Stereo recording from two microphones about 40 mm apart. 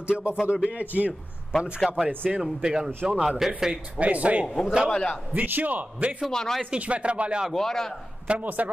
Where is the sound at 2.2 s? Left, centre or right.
Centre.